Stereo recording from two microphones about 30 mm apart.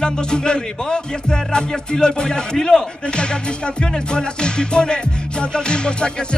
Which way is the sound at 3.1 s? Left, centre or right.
Left.